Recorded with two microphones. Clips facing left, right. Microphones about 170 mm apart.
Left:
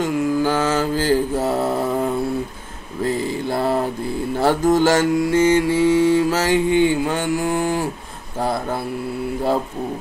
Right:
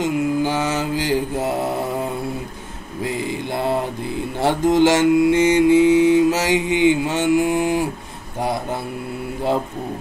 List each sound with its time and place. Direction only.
0.0 s mantra: 20° right (ahead or behind)
3.0 s mantra: 15° right (ahead or behind)
4.7 s mantra: 20° right (ahead or behind)